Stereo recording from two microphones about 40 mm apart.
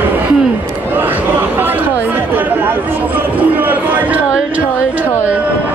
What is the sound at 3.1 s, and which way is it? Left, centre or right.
Speech, right.